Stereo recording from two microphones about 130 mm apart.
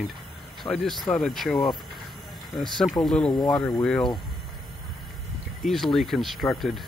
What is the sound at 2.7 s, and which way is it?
Speech, centre (ahead or behind).